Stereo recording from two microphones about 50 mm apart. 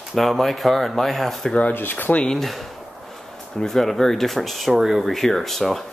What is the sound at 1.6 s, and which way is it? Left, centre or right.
Speech, left.